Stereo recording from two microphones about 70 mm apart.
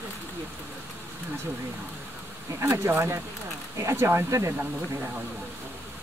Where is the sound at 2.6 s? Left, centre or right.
Right.